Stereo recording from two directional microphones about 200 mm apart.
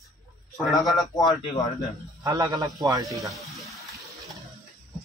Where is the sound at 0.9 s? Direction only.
20° left (ahead or behind).